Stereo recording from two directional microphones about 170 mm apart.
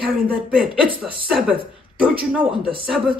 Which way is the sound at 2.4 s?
30° right (ahead or behind).